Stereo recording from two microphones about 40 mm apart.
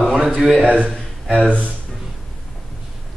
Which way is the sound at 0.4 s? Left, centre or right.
Centre.